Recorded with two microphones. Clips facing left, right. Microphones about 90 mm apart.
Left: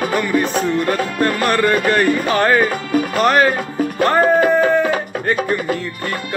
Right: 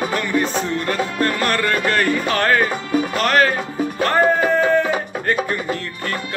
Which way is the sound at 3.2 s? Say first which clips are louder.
Left 3 dB; 15° left (ahead or behind).